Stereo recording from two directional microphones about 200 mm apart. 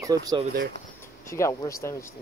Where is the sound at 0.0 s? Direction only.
20° right (ahead or behind).